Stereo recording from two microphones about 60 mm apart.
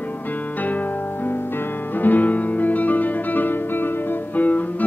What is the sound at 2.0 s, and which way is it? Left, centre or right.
Music, left.